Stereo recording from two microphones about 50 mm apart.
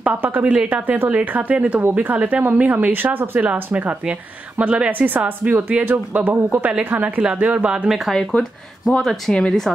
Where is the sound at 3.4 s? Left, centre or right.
Right.